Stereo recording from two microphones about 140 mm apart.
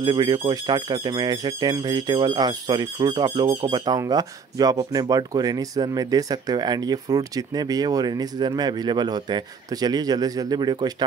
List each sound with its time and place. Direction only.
0.0 s speech: 35° right (ahead or behind)